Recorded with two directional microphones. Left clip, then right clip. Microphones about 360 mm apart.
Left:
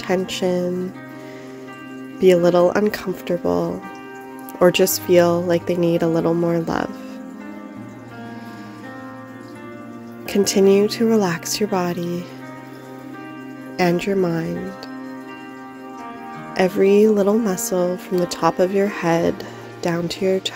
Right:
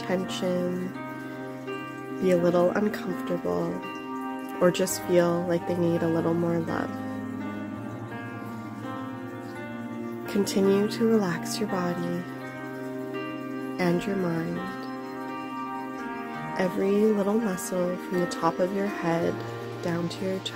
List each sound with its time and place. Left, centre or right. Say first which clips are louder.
0.0 s speech: left 8 dB; left
2.2 s speech: left 9 dB; left
10.3 s speech: left 9 dB; left
13.7 s speech: left 9 dB; left
16.5 s speech: left 11 dB; left